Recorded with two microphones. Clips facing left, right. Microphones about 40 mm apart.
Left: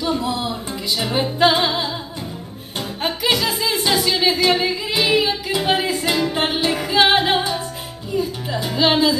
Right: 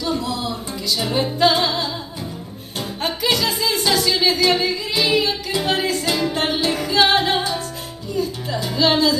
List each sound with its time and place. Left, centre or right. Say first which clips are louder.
0.2 s music: left 2 dB; left
3.0 s music: left 1 dB; centre
8.2 s speech: even; centre